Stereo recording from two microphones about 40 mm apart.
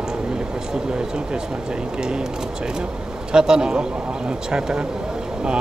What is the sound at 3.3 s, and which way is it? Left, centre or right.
Speech, centre.